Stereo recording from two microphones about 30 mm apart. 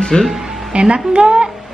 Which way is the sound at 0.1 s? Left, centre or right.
Left.